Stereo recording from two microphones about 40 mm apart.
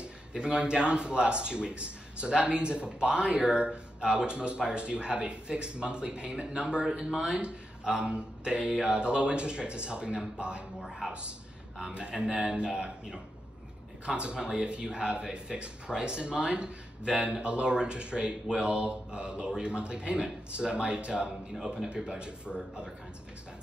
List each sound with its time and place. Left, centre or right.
0.0 s a man's voice: right
10.8 s a woman's voice: centre
11.9 s a man's voice: right
17.0 s a woman's voice: centre
17.3 s a man's voice: right